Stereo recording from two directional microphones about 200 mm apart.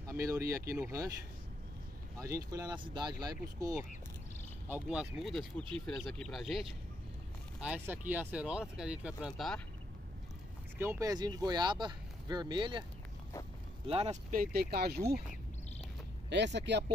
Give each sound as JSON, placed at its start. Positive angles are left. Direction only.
{"t": 0.0, "sound": "speech", "side_deg": -15}
{"t": 2.1, "sound": "speech", "side_deg": -15}
{"t": 4.6, "sound": "speech", "side_deg": -5}
{"t": 7.6, "sound": "speech", "side_deg": -10}
{"t": 10.8, "sound": "speech", "side_deg": -15}
{"t": 13.8, "sound": "speech", "side_deg": -30}
{"t": 14.3, "sound": "speech", "side_deg": -50}
{"t": 16.3, "sound": "speech", "side_deg": -60}